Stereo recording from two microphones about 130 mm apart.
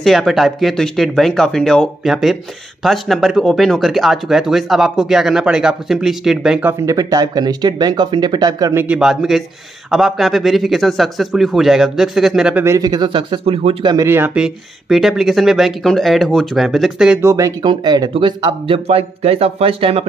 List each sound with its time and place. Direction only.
0.0 s speech: centre (ahead or behind); by 8.7 s 30° right (ahead or behind)
8.7 s speech: 10° right (ahead or behind)
12.6 s speech: 30° right (ahead or behind); by 13.9 s 45° right (ahead or behind)
13.9 s speech: 20° right (ahead or behind); by 17.2 s 5° right (ahead or behind)
17.2 s speech: 25° right (ahead or behind); by 20.1 s 45° right (ahead or behind)